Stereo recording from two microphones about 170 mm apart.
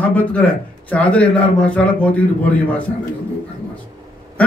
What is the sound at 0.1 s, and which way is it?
A man's voice, 10° left (ahead or behind).